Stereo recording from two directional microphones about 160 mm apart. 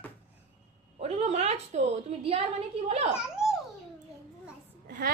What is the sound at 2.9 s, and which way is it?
Speech, 45° right (ahead or behind).